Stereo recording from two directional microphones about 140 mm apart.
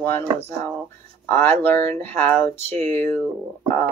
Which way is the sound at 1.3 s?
15° left (ahead or behind).